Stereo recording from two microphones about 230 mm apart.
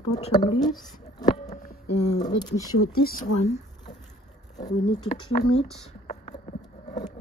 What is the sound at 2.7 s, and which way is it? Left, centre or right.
Speech, left.